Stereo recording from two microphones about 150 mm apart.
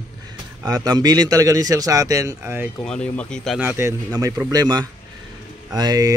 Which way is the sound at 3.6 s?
15° right (ahead or behind).